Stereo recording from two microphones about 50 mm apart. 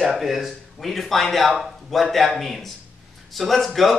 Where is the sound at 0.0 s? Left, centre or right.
Centre.